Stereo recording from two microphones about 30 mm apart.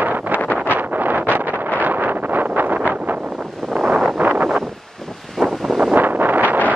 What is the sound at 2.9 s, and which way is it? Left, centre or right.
Wind noise, right.